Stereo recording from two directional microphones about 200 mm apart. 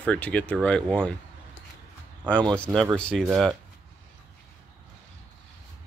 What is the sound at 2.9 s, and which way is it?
Speech, 5° left (ahead or behind).